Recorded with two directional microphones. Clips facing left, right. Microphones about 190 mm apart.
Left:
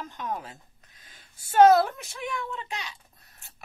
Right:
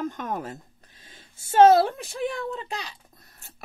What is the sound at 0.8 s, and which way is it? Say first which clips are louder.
A woman's voice: right 5 dB; 30° right (ahead or behind).